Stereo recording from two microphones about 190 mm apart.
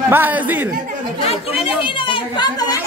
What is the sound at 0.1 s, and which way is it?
Speech, 10° right (ahead or behind).